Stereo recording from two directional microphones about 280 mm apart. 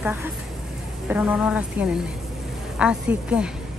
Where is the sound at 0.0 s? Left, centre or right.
Centre.